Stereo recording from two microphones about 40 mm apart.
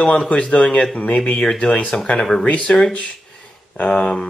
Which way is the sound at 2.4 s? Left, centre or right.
Left.